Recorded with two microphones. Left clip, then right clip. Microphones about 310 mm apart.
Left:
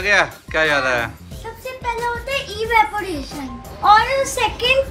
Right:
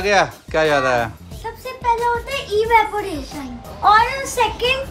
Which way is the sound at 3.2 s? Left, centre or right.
Centre.